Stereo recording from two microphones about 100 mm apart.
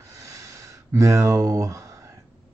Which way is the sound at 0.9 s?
30° right (ahead or behind).